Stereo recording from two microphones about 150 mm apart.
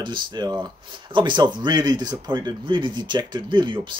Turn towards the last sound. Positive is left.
turn(degrees=-35)  # may be behind; listen again after turning